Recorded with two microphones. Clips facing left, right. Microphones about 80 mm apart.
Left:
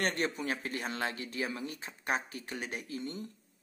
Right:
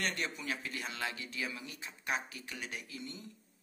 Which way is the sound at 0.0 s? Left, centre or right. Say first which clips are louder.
Left 5 dB; left.